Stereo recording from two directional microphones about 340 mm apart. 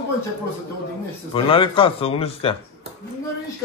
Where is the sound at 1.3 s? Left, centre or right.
Centre.